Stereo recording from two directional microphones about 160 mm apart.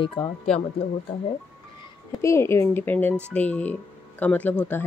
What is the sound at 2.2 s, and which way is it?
Speech, 15° left (ahead or behind).